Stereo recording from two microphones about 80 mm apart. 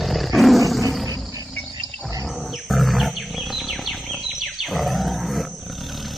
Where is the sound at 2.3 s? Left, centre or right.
Centre.